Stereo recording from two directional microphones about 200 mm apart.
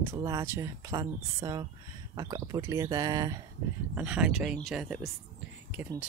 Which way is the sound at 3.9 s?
5° right (ahead or behind).